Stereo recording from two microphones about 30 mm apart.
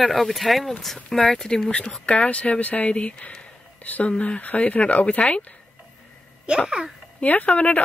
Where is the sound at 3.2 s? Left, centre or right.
Left.